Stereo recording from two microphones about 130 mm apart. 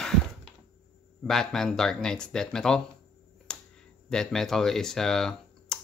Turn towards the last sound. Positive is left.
turn(degrees=5)  # may be behind; listen again after turning